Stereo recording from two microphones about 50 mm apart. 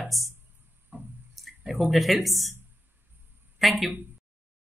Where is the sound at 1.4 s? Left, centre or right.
Centre.